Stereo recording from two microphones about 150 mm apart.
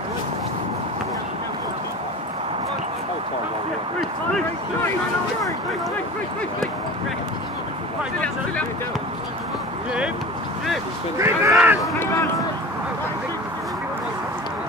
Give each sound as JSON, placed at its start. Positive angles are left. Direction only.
{"t": 11.1, "sound": "speech", "side_deg": -20}
{"t": 12.0, "sound": "speech", "side_deg": 15}